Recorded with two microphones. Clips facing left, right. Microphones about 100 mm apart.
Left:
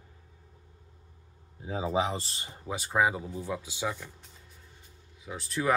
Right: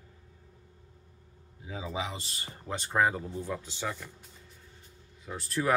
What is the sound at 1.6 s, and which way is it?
Speech, 35° left (ahead or behind).